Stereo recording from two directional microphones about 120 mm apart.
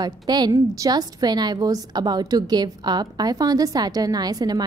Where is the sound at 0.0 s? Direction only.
35° right (ahead or behind).